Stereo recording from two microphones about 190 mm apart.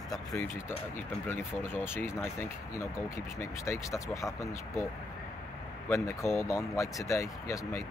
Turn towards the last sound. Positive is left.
turn(degrees=15)  # may be behind; listen again after turning